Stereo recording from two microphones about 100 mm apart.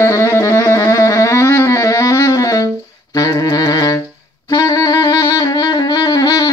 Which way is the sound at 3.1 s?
40° left (ahead or behind).